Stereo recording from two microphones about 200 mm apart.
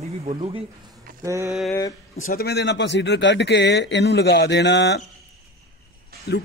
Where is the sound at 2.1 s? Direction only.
45° left (ahead or behind).